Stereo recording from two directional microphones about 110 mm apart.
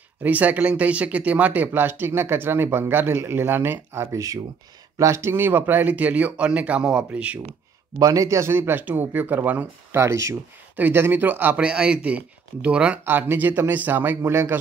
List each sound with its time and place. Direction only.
0.2 s speech: 15° right (ahead or behind)
8.0 s speech: 30° right (ahead or behind)
10.0 s speech: 25° right (ahead or behind)